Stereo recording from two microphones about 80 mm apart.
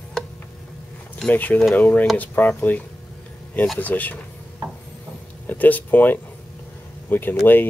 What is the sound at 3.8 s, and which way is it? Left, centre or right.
Speech, left.